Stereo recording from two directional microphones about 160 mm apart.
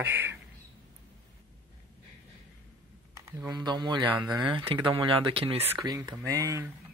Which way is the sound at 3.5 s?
25° right (ahead or behind).